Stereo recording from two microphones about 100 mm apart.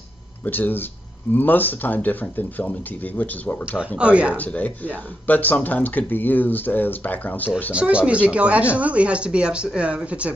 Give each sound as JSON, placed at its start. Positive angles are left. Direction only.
{"t": 0.5, "sound": "speech", "side_deg": 20}
{"t": 4.0, "sound": "speech", "side_deg": -15}
{"t": 4.4, "sound": "speech", "side_deg": 15}
{"t": 7.7, "sound": "speech", "side_deg": -10}